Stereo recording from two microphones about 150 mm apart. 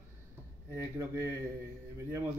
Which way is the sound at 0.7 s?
20° right (ahead or behind).